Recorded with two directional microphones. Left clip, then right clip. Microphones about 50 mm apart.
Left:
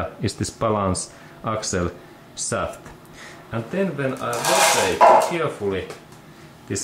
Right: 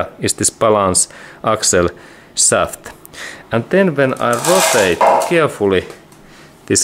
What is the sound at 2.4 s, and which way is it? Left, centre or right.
Speech, right.